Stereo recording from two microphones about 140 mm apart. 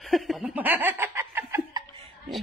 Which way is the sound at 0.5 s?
10° right (ahead or behind).